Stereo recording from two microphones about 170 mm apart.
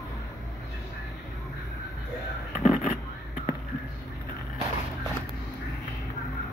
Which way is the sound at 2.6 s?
45° left (ahead or behind).